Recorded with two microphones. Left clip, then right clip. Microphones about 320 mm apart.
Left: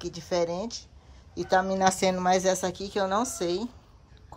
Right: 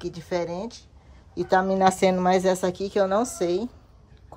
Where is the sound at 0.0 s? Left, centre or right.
Centre.